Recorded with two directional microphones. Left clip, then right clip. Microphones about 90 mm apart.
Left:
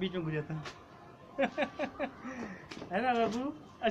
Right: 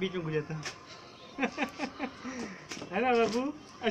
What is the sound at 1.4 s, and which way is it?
Speech, 35° left (ahead or behind).